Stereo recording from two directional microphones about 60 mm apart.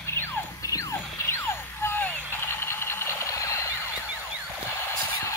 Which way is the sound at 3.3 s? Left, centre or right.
Left.